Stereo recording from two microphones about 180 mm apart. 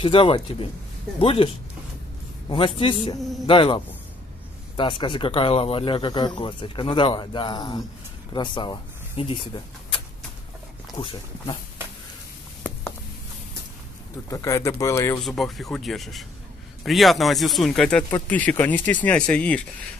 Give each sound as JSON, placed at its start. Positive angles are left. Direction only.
{"t": 0.0, "sound": "speech", "side_deg": 30}
{"t": 2.5, "sound": "speech", "side_deg": 30}
{"t": 11.0, "sound": "speech", "side_deg": 30}
{"t": 14.3, "sound": "speech", "side_deg": 15}
{"t": 15.2, "sound": "speech", "side_deg": 0}